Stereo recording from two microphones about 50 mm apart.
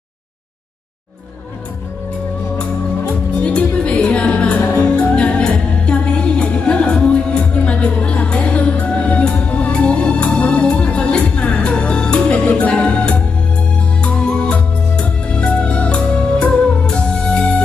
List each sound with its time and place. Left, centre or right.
3.4 s music: left